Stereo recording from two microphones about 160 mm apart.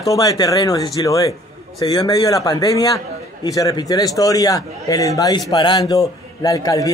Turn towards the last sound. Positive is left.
turn(degrees=20)  # may be behind; listen again after turning